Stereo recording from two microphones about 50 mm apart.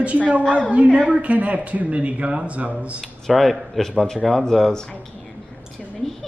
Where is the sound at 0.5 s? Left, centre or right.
Right.